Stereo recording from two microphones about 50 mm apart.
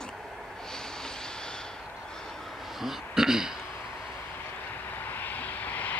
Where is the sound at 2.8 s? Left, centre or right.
Centre.